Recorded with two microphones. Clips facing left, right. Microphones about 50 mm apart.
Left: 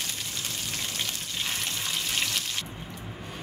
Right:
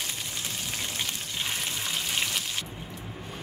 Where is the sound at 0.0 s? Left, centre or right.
Centre.